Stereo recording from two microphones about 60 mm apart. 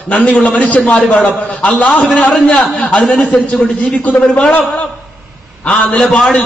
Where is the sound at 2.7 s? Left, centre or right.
Left.